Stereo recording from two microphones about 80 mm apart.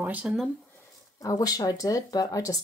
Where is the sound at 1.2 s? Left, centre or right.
Left.